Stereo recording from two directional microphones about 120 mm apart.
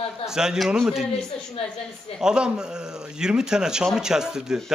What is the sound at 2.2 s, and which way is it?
A man's voice, 5° right (ahead or behind).